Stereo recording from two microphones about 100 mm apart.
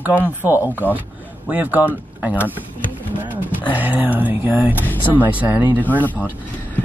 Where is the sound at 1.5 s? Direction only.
15° right (ahead or behind).